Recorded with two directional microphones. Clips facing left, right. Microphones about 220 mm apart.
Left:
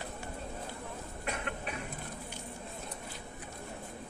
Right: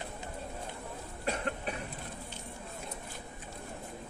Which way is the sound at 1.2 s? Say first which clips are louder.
Right 4 dB; 30° right (ahead or behind).